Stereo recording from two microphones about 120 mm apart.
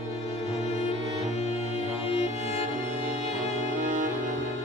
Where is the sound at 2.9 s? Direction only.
90° right.